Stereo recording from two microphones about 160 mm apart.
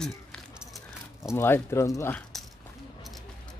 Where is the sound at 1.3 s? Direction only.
15° left (ahead or behind).